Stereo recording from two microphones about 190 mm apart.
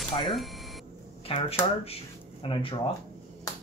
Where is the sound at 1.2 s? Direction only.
30° left (ahead or behind).